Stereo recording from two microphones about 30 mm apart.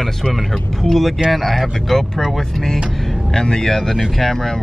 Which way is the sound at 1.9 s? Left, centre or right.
Centre.